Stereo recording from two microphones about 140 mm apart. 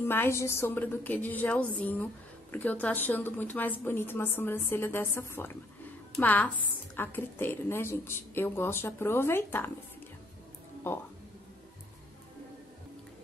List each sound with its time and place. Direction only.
0.1 s a woman's voice: 15° left (ahead or behind)